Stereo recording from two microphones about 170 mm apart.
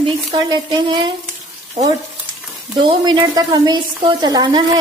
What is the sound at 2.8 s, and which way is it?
A woman's voice, 25° right (ahead or behind).